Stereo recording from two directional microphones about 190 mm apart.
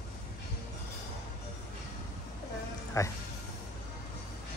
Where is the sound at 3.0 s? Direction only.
15° left (ahead or behind).